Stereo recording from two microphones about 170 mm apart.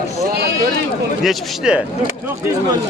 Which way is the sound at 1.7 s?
5° right (ahead or behind).